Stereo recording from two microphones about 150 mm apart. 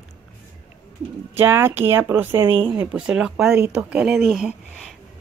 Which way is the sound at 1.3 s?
15° right (ahead or behind).